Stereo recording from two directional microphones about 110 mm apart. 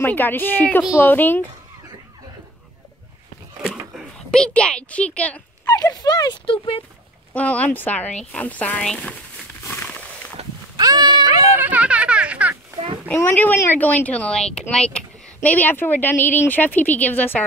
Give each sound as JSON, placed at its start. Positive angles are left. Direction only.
{"t": 0.0, "sound": "a child's voice", "side_deg": 15}
{"t": 4.3, "sound": "a child's voice", "side_deg": 10}
{"t": 5.7, "sound": "speech", "side_deg": 35}
{"t": 6.4, "sound": "speech", "side_deg": 55}
{"t": 7.3, "sound": "a child's voice", "side_deg": 15}
{"t": 9.8, "sound": "a sound", "side_deg": 10}
{"t": 10.8, "sound": "a sound", "side_deg": -40}
{"t": 11.5, "sound": "a sound", "side_deg": -15}
{"t": 13.1, "sound": "a child's voice", "side_deg": 20}